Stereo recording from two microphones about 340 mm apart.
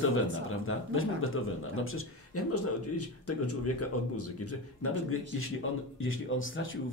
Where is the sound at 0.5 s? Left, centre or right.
Left.